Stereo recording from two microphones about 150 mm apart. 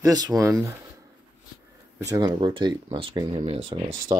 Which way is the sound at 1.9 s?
25° right (ahead or behind).